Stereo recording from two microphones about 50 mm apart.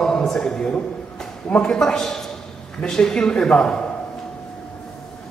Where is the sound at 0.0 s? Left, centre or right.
Centre.